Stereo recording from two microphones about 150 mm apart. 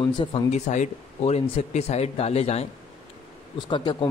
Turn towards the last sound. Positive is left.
turn(degrees=30)  # may be behind; listen again after turning